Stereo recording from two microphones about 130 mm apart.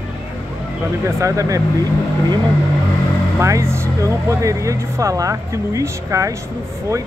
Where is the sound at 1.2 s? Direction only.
25° right (ahead or behind).